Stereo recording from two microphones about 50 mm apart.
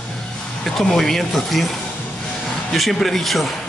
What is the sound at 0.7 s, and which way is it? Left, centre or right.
A man's voice, centre.